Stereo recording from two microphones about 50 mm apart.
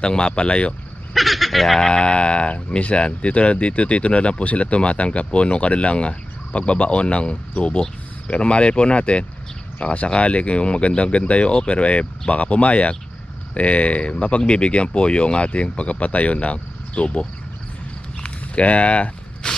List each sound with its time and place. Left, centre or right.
0.0 s speech: centre
1.1 s speech: centre
1.9 s speech: centre
18.2 s walk: left